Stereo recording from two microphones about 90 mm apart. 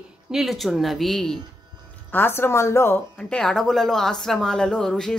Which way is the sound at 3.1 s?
10° left (ahead or behind).